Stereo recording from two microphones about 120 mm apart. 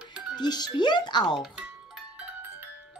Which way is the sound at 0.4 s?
35° left (ahead or behind).